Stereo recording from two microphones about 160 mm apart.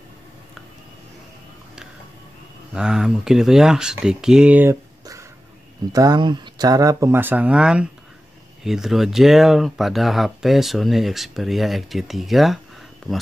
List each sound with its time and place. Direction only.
2.7 s speech: 5° right (ahead or behind)
5.9 s speech: 25° right (ahead or behind); by 13.2 s 5° left (ahead or behind)